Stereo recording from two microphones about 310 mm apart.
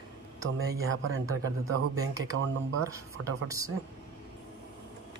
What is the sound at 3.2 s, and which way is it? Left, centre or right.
Speech, centre.